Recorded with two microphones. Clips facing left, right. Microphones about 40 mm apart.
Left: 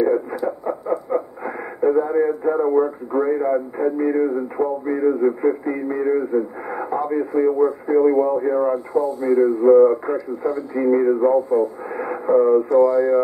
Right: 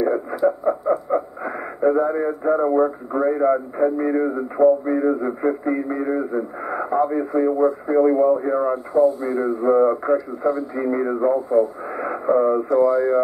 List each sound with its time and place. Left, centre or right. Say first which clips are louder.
0.0 s radio: even; centre
2.7 s speech: even; centre